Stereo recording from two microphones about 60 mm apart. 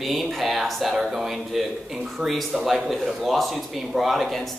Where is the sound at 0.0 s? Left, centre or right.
Centre.